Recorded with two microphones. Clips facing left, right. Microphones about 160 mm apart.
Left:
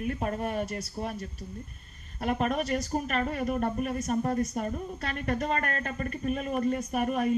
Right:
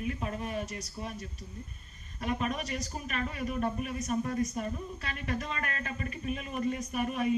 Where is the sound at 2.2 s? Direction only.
50° left (ahead or behind).